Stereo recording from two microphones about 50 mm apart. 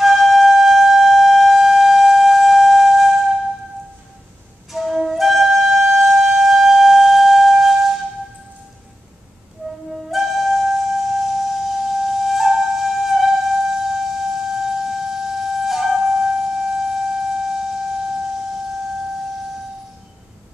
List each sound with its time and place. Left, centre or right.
0.0 s flute: centre
4.7 s flute: centre
10.1 s flute: centre